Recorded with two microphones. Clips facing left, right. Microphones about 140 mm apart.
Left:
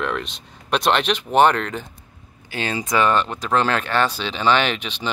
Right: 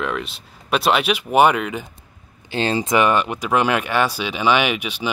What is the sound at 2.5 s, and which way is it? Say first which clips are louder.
Speech: right 4 dB; 30° right (ahead or behind).